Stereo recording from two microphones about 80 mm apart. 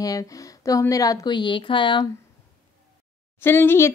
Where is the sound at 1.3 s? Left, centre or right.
Left.